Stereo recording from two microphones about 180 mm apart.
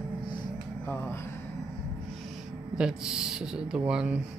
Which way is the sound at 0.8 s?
10° left (ahead or behind).